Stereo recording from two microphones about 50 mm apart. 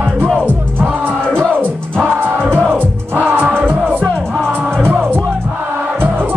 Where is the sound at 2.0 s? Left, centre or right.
Right.